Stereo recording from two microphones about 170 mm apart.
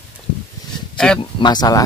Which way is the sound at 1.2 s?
25° left (ahead or behind).